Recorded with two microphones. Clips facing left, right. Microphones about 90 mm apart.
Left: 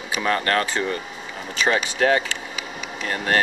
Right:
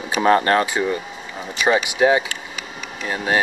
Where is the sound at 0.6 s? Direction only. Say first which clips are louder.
Right 3 dB; 10° right (ahead or behind).